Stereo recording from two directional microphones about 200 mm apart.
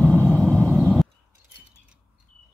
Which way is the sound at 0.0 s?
10° right (ahead or behind).